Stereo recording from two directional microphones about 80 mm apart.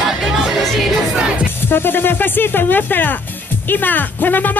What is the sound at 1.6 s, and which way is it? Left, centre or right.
Music, left.